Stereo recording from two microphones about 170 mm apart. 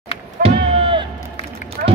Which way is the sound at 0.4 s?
30° right (ahead or behind).